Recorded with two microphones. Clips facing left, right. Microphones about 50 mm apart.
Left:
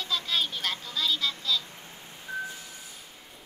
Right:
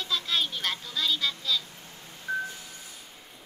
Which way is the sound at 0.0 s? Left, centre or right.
Centre.